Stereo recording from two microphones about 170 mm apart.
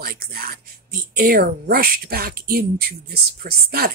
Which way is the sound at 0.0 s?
60° right (ahead or behind).